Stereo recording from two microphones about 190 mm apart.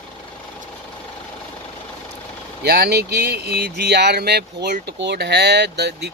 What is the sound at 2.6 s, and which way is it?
Speech, 60° right (ahead or behind).